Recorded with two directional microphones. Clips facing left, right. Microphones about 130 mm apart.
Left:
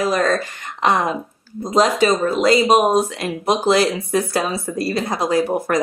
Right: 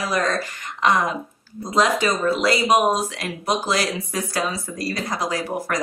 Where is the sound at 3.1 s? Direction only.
25° left (ahead or behind).